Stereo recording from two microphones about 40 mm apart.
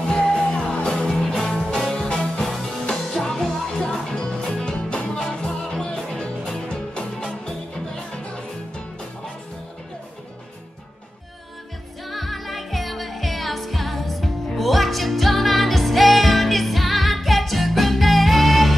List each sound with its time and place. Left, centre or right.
0.0 s music: left
1.3 s music: centre; by 8.3 s left
12.1 s music: centre